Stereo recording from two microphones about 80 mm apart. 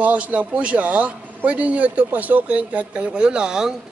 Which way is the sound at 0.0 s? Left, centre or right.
Centre.